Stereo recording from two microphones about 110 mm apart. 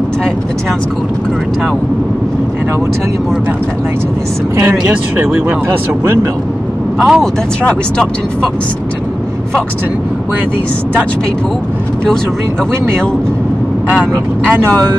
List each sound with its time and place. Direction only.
4.6 s speech: 20° right (ahead or behind)
7.0 s speech: centre (ahead or behind)